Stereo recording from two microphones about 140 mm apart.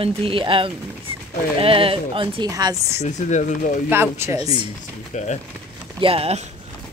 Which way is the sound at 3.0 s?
60° left (ahead or behind).